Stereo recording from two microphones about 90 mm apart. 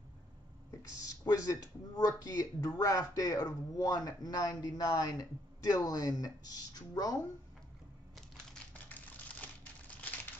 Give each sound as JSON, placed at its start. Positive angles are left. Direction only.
{"t": 0.7, "sound": "speech", "side_deg": 40}
{"t": 8.8, "sound": "typing", "side_deg": 20}